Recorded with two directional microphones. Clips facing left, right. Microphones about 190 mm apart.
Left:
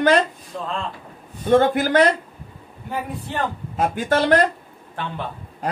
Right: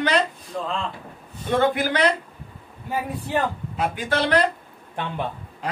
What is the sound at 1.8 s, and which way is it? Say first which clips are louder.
Speech: left 5 dB; 45° left (ahead or behind).